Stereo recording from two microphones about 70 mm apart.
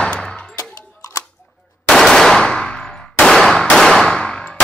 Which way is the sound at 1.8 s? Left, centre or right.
Centre.